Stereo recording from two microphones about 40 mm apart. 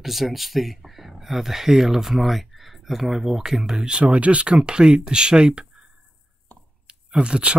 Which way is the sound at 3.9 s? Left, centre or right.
Right.